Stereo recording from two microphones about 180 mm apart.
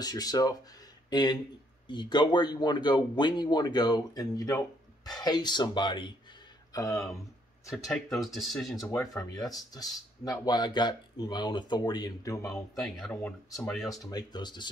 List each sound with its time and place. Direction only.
0.0 s speech: 20° left (ahead or behind)
7.7 s speech: centre (ahead or behind)
8.7 s speech: 15° left (ahead or behind)
12.7 s speech: centre (ahead or behind)
14.1 s speech: 25° left (ahead or behind)